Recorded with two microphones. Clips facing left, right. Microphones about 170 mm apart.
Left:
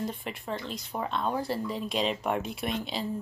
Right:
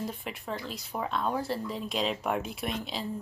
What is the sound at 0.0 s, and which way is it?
Speech, 5° right (ahead or behind).